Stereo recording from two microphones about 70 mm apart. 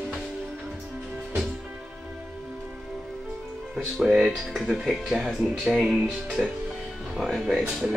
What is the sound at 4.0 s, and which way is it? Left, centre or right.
Speech, centre.